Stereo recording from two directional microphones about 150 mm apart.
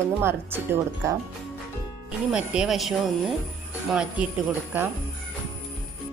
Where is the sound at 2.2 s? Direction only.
5° right (ahead or behind).